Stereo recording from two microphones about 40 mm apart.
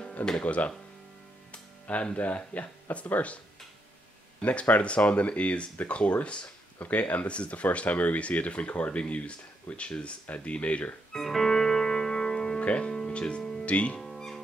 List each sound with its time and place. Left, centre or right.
0.4 s speech: left
1.5 s music: left
2.1 s speech: left
4.4 s speech: left
11.1 s music: centre
12.5 s music: left
13.7 s speech: left
13.9 s music: centre